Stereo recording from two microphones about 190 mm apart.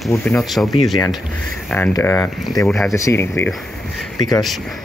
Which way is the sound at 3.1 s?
15° left (ahead or behind).